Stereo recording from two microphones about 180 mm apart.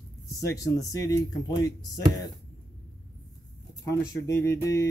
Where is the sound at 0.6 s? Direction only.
20° left (ahead or behind).